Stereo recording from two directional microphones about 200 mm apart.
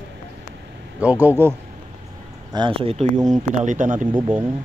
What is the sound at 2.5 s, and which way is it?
A man's voice, 25° right (ahead or behind).